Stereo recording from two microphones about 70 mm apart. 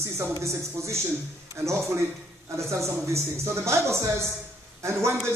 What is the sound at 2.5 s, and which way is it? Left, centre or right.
A man's voice, right.